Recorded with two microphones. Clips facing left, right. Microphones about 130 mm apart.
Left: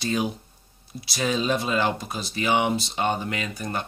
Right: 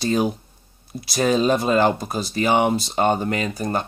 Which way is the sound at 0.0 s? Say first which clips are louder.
Right 5 dB; 40° right (ahead or behind).